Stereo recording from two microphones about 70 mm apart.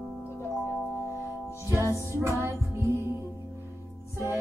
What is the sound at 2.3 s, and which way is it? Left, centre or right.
Music, right.